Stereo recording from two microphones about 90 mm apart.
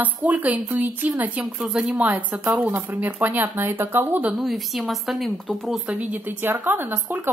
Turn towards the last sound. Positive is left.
turn(degrees=-20)  # may be behind; listen again after turning